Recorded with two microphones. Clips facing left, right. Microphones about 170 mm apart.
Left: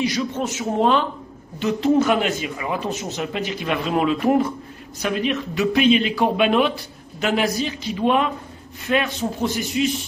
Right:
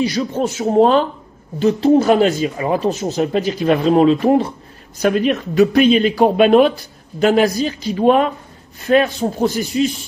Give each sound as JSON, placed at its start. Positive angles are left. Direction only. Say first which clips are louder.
{"t": 0.0, "sound": "speech", "louder": "right 5 dB", "side_deg": -35}
{"t": 5.0, "sound": "speech", "louder": "right 7 dB", "side_deg": -45}